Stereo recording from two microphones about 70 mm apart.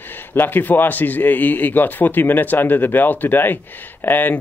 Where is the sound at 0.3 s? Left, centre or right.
Left.